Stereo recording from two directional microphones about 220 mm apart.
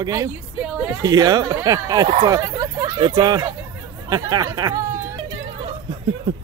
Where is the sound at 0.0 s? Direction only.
15° right (ahead or behind).